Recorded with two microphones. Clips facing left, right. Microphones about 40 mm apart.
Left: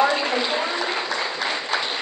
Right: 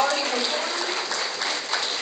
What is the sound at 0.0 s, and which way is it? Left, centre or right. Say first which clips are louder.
A woman's voice: left 3 dB; centre.